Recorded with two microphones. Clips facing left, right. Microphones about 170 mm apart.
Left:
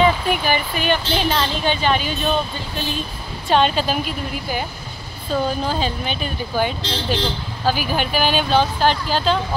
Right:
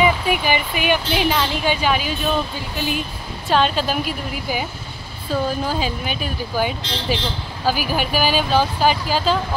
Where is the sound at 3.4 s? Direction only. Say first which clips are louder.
Left 1 dB; centre (ahead or behind).